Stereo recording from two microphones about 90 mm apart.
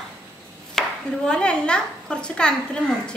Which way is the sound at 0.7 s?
10° left (ahead or behind).